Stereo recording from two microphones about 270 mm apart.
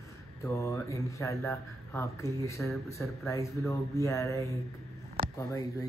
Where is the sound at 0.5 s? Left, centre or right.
Centre.